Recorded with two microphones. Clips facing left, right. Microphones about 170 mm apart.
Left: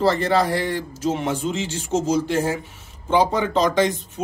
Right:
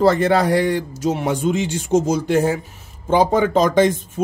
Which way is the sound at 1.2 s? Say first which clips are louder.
Right 5 dB; 55° right (ahead or behind).